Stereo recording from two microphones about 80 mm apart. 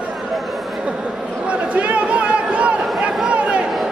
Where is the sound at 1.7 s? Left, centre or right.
Centre.